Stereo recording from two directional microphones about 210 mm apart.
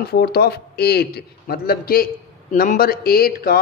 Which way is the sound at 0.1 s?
50° left (ahead or behind).